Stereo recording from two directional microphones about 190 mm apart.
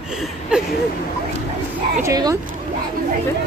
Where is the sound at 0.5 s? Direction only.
5° right (ahead or behind).